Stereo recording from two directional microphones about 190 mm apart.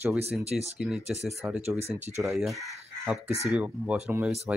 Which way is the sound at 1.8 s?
35° right (ahead or behind).